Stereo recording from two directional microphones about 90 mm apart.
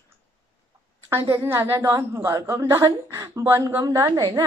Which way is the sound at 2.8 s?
40° right (ahead or behind).